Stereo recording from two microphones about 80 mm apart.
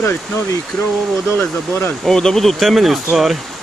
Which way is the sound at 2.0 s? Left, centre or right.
Centre.